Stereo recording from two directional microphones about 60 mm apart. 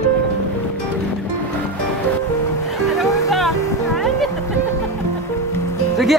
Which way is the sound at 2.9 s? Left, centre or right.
Centre.